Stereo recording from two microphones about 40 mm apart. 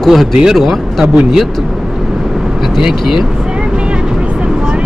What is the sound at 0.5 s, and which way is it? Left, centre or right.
Speech, centre.